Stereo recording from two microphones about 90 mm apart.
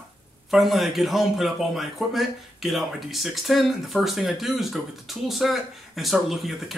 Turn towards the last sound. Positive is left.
turn(degrees=0)  # may be behind; listen again after turning